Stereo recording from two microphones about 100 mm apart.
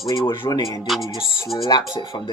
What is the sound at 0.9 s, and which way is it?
Speech, centre (ahead or behind).